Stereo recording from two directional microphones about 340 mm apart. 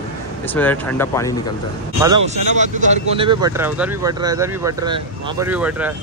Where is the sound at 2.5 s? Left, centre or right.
Right; by 5.9 s centre.